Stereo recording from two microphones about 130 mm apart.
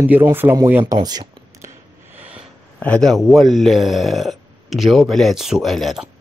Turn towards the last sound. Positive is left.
turn(degrees=0)  # may be behind; listen again after turning